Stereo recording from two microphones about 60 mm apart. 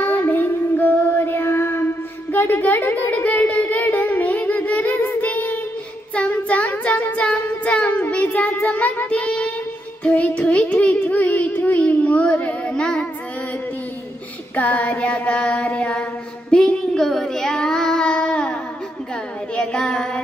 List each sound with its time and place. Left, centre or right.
0.0 s child singing: left
2.3 s a sound: left
6.5 s child singing: left
14.5 s female singing: left
19.5 s child singing: centre